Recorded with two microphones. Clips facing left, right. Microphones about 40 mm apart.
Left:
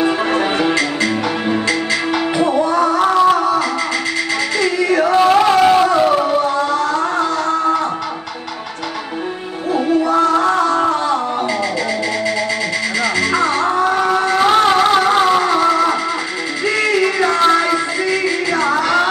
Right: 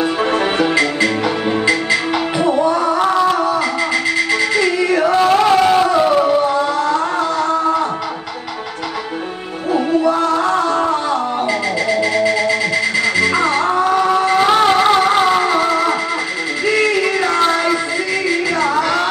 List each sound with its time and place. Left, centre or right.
0.0 s music: centre
9.7 s music: centre